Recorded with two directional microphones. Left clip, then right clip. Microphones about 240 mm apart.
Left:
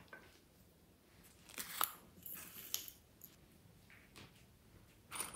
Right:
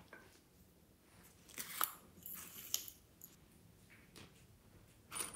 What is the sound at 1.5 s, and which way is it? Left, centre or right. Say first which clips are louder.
Scissors: left 1 dB; centre.